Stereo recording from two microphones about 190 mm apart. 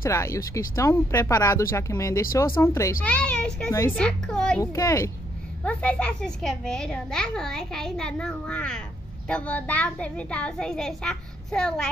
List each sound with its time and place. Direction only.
0.0 s a child's voice: 15° left (ahead or behind)
4.6 s a child's voice: 15° left (ahead or behind)